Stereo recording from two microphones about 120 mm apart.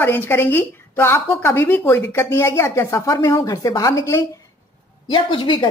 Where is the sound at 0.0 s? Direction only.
20° left (ahead or behind).